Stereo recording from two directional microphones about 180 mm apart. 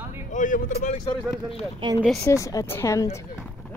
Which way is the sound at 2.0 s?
Centre (ahead or behind).